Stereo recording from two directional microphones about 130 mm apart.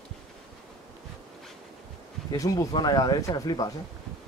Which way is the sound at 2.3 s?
25° left (ahead or behind).